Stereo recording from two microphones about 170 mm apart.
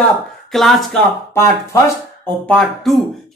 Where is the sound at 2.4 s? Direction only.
Centre (ahead or behind).